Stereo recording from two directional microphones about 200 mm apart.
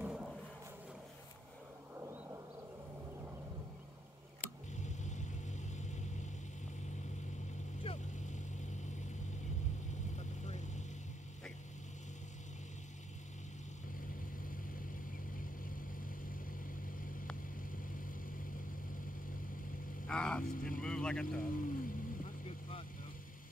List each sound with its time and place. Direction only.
0.0 s a sound: 5° right (ahead or behind)
4.7 s a sound: 35° left (ahead or behind)
7.8 s vehicle: 35° left (ahead or behind)
10.1 s vehicle: 35° left (ahead or behind)
20.1 s vehicle: 5° left (ahead or behind)
20.4 s speech: 45° left (ahead or behind)
20.8 s speech: 5° left (ahead or behind)
21.4 s vehicle: 45° left (ahead or behind)